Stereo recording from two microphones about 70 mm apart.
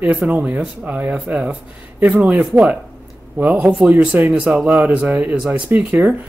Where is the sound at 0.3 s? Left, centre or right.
Right.